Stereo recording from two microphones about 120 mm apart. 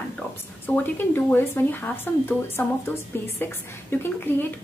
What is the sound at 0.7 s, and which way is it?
A woman's voice, 15° left (ahead or behind).